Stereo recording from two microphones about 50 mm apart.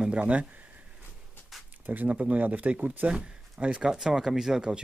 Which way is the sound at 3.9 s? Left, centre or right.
Centre.